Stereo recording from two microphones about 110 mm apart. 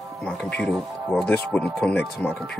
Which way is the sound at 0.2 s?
10° left (ahead or behind).